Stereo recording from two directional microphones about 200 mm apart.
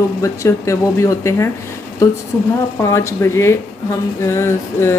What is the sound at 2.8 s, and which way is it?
Speech, 15° left (ahead or behind).